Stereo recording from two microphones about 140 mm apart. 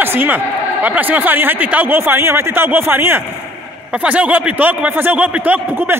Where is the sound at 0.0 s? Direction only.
15° right (ahead or behind).